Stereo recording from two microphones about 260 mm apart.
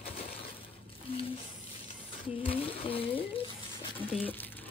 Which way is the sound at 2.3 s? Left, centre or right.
Left.